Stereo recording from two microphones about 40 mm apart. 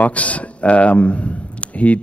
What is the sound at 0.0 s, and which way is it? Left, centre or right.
Speech, left.